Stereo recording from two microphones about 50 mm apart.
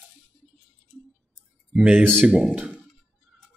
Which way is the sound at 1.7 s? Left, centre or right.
Right.